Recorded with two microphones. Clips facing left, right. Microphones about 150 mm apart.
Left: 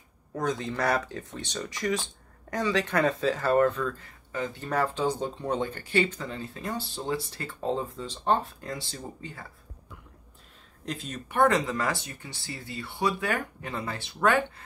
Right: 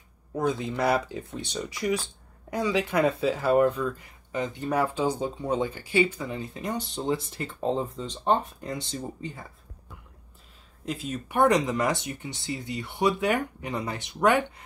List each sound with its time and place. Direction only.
0.3 s speech: 10° right (ahead or behind)
10.9 s speech: 5° right (ahead or behind)